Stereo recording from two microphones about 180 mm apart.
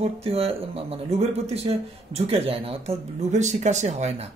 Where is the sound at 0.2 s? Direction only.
35° right (ahead or behind).